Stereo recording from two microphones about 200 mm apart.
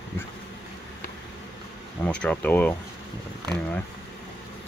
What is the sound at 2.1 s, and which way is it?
Speech, 5° left (ahead or behind).